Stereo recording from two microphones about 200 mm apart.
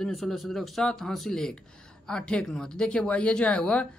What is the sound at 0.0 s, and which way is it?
Speech, centre (ahead or behind).